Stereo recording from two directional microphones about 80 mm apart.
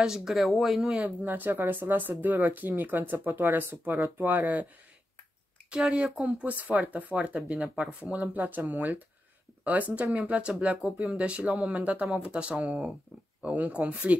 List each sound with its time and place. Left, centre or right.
0.0 s speech: centre
1.2 s speech: right
5.7 s speech: centre